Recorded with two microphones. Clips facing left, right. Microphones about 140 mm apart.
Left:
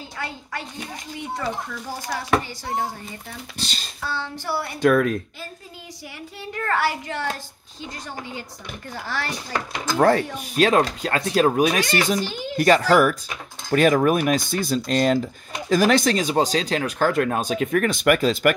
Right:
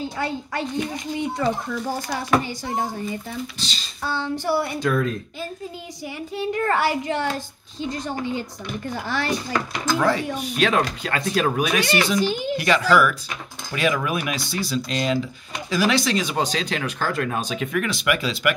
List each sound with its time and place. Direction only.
0.0 s a child's voice: 25° right (ahead or behind)
3.5 s speech: 55° left (ahead or behind)
4.0 s child singing: 20° right (ahead or behind)
4.7 s speech: 70° left (ahead or behind)
6.3 s a child's voice: 20° right (ahead or behind)
9.9 s speech: 50° left (ahead or behind)
10.5 s speech: 40° left (ahead or behind)
12.2 s child singing: 15° right (ahead or behind)
12.5 s speech: 45° left (ahead or behind)